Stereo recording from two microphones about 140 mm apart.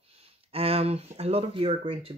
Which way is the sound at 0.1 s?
45° right (ahead or behind).